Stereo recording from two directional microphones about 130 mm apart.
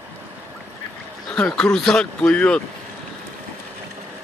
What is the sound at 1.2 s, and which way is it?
A man's voice, 10° left (ahead or behind).